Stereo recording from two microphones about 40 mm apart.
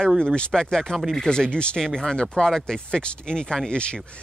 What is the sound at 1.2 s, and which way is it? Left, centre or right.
Speech, left.